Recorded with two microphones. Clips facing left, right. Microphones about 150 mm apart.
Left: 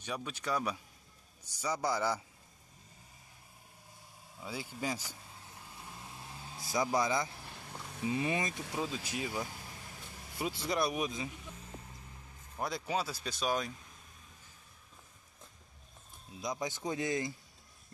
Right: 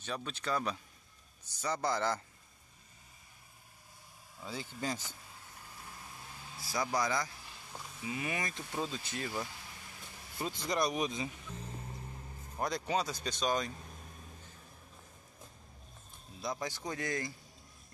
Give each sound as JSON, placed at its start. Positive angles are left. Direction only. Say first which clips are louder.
{"t": 0.0, "sound": "a man's voice", "louder": "even", "side_deg": 10}
{"t": 4.4, "sound": "a man's voice", "louder": "left 1 dB", "side_deg": 10}
{"t": 6.2, "sound": "vehicle", "louder": "left 2 dB", "side_deg": 20}
{"t": 8.0, "sound": "speech", "louder": "left 5 dB", "side_deg": 30}
{"t": 8.7, "sound": "a man's voice", "louder": "even", "side_deg": 5}
{"t": 12.5, "sound": "speech", "louder": "right 1 dB", "side_deg": 0}
{"t": 16.3, "sound": "speech", "louder": "left 1 dB", "side_deg": 20}